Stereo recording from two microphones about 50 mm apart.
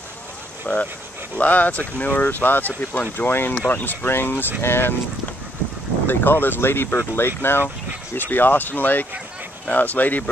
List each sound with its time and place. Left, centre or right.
0.7 s speech: left
1.4 s speech: left
6.0 s speech: left